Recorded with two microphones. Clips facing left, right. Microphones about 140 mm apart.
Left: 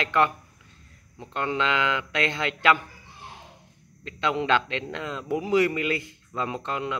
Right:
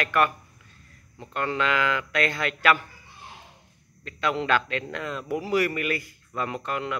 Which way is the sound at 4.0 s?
20° left (ahead or behind).